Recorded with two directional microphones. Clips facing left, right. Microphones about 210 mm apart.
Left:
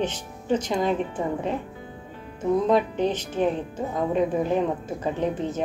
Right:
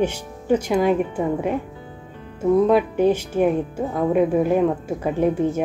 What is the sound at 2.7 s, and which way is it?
Speech, 10° right (ahead or behind).